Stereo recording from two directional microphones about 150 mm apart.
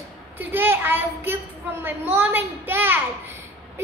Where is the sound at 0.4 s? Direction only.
15° right (ahead or behind).